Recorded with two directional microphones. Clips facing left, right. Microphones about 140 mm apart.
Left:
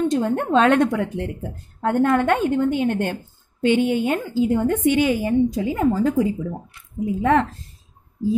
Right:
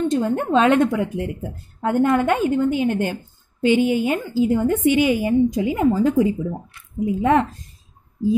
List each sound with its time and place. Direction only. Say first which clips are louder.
0.0 s a woman's voice: even; centre (ahead or behind); by 7.4 s 20° right (ahead or behind)